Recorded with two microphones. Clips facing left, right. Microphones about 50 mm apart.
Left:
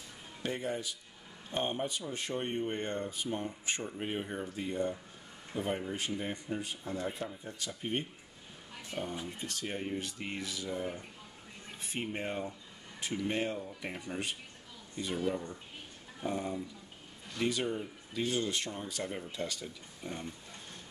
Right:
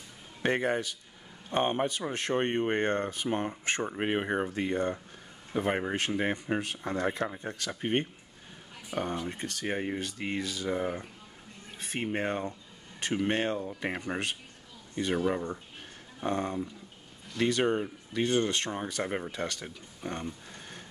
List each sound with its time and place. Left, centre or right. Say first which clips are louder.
0.4 s speech: right 8 dB; right
13.1 s speech: right 5 dB; right
16.2 s speech: right 5 dB; right